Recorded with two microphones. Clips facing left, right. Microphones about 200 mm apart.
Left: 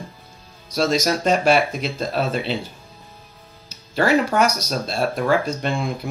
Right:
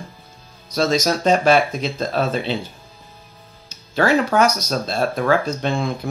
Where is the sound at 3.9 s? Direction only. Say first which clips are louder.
Right 1 dB; centre (ahead or behind).